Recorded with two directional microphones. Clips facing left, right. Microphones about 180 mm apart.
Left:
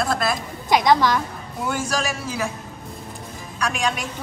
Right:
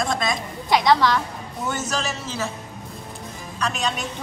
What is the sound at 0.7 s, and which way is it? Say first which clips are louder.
A woman's voice: left 1 dB; 20° left (ahead or behind).